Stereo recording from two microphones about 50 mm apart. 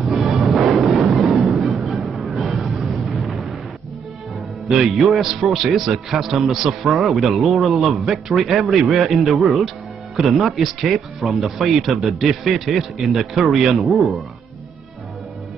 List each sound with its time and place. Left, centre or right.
0.0 s music: centre
4.6 s speech: centre